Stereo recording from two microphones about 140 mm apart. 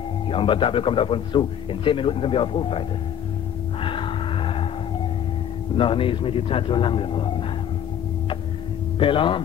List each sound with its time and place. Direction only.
0.3 s speech: 40° left (ahead or behind)
3.8 s vehicle: 40° left (ahead or behind)
5.8 s speech: 40° left (ahead or behind)
9.0 s speech: 40° left (ahead or behind)